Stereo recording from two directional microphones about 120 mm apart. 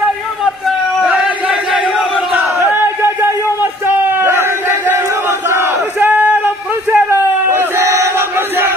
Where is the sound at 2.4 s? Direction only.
20° right (ahead or behind).